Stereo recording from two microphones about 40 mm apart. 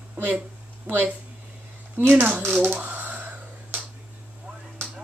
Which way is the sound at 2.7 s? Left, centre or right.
Right.